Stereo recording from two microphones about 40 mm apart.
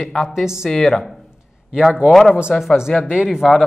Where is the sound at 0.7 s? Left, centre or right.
Centre.